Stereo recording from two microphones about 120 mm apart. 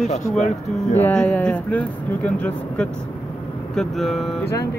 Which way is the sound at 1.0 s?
10° left (ahead or behind).